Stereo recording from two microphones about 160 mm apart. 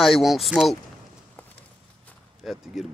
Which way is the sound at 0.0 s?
Centre (ahead or behind).